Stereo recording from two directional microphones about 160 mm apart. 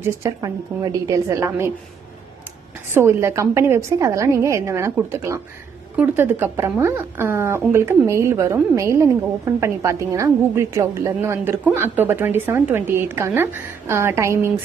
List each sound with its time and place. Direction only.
0.0 s a woman's voice: 20° right (ahead or behind)
2.9 s speech: 15° right (ahead or behind)